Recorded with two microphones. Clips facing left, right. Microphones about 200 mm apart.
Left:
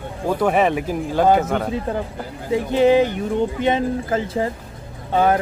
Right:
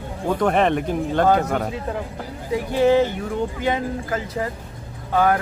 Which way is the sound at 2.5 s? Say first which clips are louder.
Left 2 dB; 20° left (ahead or behind).